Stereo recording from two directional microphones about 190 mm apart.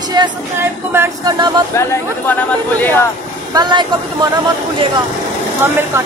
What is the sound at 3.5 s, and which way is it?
Speech, 25° right (ahead or behind).